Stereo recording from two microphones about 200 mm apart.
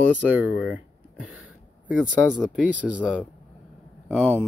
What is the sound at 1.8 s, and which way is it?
Speech, 5° right (ahead or behind).